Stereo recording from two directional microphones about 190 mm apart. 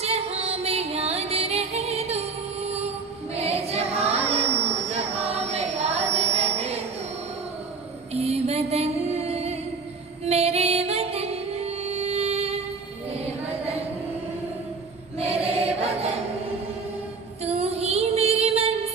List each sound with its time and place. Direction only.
0.0 s music: 35° right (ahead or behind)
4.6 s a sound: 35° right (ahead or behind)
5.5 s music: 35° right (ahead or behind)
6.1 s mantra: 35° right (ahead or behind)
8.1 s mantra: 35° right (ahead or behind)
10.2 s music: 35° right (ahead or behind)
15.1 s choir: 30° right (ahead or behind)
17.4 s music: 35° right (ahead or behind)